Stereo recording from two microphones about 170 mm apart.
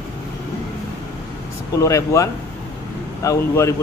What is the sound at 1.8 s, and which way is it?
A man's voice, 20° left (ahead or behind).